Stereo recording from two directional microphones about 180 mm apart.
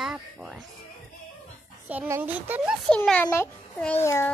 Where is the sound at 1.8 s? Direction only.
10° right (ahead or behind).